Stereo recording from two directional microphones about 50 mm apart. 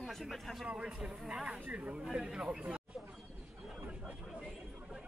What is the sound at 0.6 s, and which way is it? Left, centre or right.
Speech, right.